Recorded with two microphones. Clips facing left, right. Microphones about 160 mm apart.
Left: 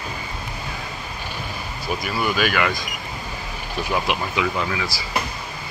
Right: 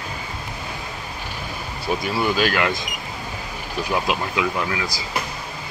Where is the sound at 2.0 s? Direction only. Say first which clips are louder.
Right 1 dB; 25° right (ahead or behind).